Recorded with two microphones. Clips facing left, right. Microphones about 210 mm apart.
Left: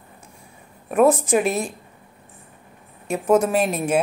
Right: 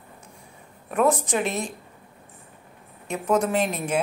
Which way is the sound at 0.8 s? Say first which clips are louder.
Left 5 dB; 20° left (ahead or behind).